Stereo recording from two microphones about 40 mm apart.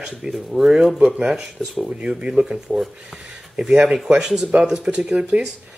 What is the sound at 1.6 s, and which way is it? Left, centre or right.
Speech, centre.